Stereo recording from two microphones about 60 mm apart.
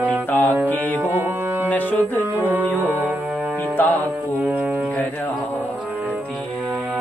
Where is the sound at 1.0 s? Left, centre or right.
Right.